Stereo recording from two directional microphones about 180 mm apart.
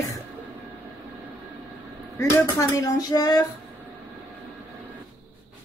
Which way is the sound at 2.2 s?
15° left (ahead or behind).